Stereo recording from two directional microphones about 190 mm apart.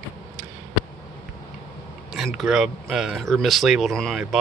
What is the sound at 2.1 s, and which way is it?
Speech, centre (ahead or behind).